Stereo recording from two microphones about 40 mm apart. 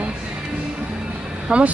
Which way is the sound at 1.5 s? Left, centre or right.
Right.